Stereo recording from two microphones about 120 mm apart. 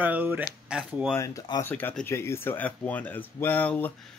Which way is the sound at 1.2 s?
30° left (ahead or behind).